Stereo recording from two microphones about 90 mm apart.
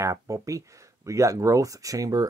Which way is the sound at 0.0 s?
35° right (ahead or behind).